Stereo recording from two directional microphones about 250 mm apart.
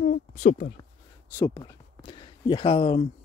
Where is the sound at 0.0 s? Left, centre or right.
Left.